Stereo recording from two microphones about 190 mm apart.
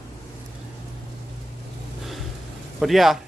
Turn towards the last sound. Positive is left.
turn(degrees=0)  # may be behind; listen again after turning